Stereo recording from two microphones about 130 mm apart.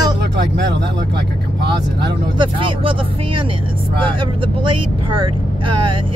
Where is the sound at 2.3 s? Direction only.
40° right (ahead or behind).